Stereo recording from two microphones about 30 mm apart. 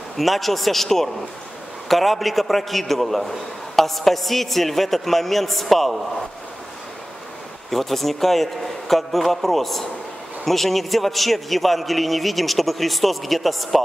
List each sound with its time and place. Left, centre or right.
0.2 s a man's voice: centre
7.7 s a man's voice: centre